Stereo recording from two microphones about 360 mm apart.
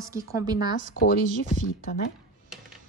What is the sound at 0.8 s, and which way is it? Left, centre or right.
Speech, left.